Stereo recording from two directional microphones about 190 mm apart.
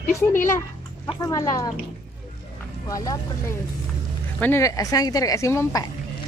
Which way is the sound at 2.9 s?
20° left (ahead or behind).